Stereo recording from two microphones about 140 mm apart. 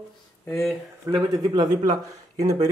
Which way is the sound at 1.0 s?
25° right (ahead or behind).